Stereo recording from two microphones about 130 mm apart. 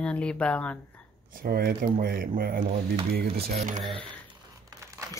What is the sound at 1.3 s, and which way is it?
Speech, 90° right.